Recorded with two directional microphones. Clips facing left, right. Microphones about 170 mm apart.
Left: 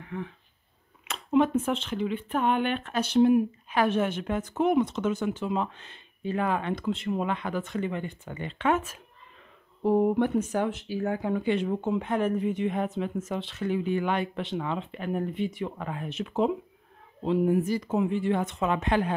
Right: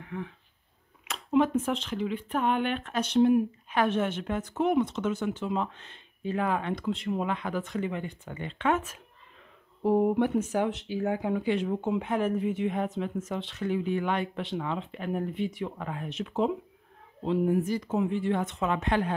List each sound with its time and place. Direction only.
1.0 s a sound: centre (ahead or behind)
1.9 s speech: centre (ahead or behind)
9.8 s speech: 10° right (ahead or behind)
10.7 s speech: 20° right (ahead or behind)
11.4 s speech: centre (ahead or behind)